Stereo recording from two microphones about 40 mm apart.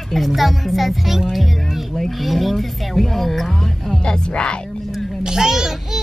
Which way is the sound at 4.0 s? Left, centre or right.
Left.